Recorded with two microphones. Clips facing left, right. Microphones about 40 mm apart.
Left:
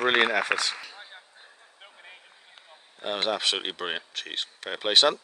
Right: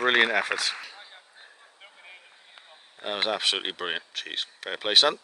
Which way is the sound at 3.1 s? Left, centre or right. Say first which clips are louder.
Even; centre.